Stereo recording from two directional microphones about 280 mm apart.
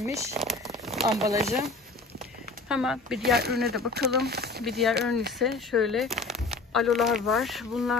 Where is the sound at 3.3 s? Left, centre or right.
Right.